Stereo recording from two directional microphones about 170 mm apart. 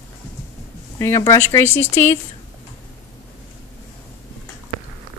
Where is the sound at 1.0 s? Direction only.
15° left (ahead or behind).